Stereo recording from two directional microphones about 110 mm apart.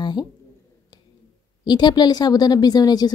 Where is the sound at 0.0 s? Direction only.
45° left (ahead or behind).